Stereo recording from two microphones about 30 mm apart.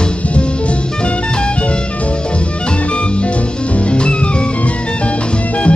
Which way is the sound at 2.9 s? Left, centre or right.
Left.